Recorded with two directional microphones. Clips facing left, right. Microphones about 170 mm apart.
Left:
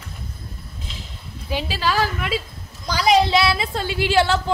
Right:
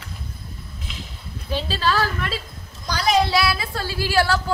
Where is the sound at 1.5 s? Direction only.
10° left (ahead or behind).